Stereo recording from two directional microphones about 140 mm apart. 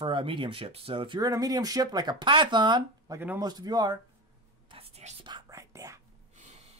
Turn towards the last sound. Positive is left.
turn(degrees=-20)  # may be behind; listen again after turning